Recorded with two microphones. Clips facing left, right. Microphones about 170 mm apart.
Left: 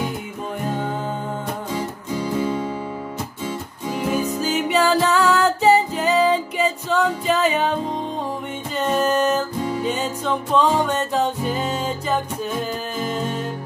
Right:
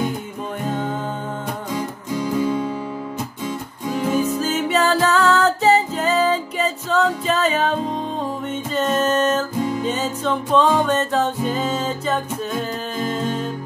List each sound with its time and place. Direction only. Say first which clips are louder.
2.4 s music: right 2 dB; 30° left (ahead or behind)
4.1 s music: right 1 dB; 10° left (ahead or behind)
8.7 s music: even; 10° left (ahead or behind)